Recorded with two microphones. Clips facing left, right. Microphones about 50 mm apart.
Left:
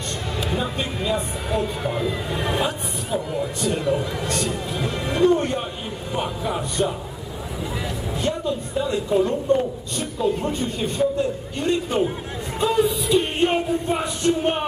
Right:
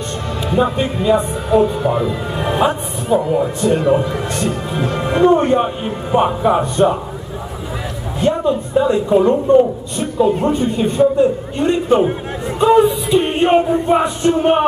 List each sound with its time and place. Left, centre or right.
1.1 s a man's voice: right
1.9 s speech: centre
2.6 s a man's voice: right
8.2 s a man's voice: right
12.5 s music: right